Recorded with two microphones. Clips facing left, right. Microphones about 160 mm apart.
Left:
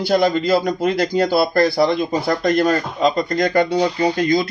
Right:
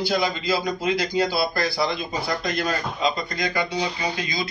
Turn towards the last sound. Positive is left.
turn(degrees=55)  # may be behind; listen again after turning